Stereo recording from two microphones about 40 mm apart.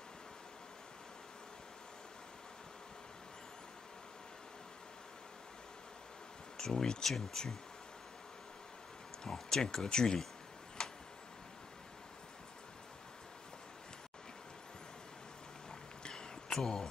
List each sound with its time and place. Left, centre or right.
6.5 s speech: centre
9.3 s speech: centre
10.8 s tick-tock: centre
16.0 s a sound: centre
16.5 s speech: centre